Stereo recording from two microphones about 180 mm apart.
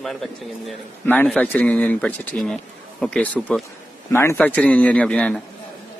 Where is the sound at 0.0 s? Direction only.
Centre (ahead or behind).